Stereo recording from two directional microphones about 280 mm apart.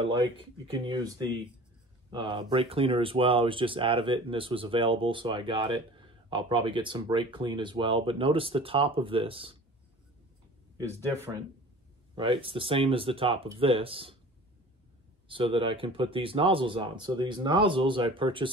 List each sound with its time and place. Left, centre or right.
0.0 s speech: centre
10.8 s speech: centre
15.2 s speech: centre